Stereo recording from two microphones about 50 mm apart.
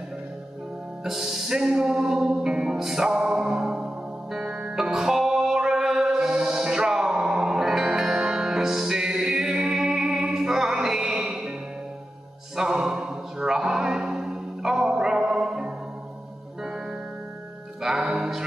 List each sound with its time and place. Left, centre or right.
1.0 s music: centre
12.5 s music: centre
17.8 s music: centre
18.1 s music: centre